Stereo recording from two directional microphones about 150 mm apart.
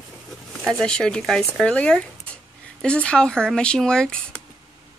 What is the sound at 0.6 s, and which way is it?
A woman's voice, 5° left (ahead or behind).